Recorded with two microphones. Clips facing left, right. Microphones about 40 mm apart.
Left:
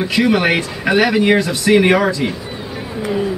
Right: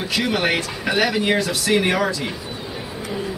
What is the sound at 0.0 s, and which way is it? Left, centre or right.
Speech, centre.